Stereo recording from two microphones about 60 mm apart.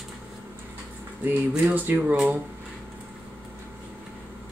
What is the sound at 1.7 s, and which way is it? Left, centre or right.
Speech, right.